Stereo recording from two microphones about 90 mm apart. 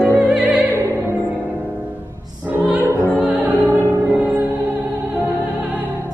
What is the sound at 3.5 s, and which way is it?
Music, 25° left (ahead or behind).